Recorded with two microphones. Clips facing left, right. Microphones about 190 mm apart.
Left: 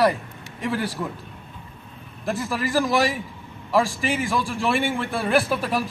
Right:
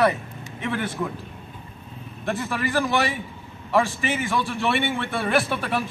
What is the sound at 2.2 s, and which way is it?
Speech, 35° left (ahead or behind).